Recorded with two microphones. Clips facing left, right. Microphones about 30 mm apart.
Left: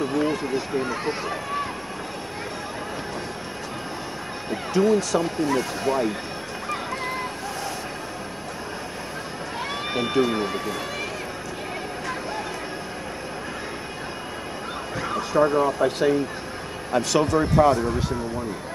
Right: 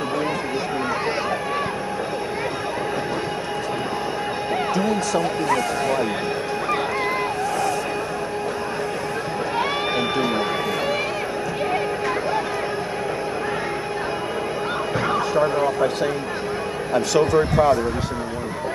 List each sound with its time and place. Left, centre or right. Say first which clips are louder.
0.1 s speech: even; centre
4.7 s a man's voice: left 5 dB; centre
5.2 s speech: right 3 dB; right
9.9 s speech: left 4 dB; centre
15.3 s speech: left 3 dB; centre
16.9 s a man's voice: right 3 dB; centre